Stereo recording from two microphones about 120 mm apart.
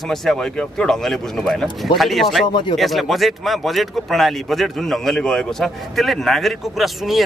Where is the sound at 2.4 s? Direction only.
40° left (ahead or behind).